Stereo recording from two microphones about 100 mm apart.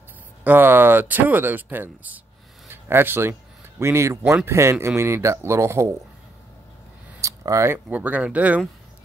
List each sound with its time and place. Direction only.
0.4 s speech: 20° right (ahead or behind)
7.2 s speech: 30° right (ahead or behind); by 8.6 s 15° right (ahead or behind)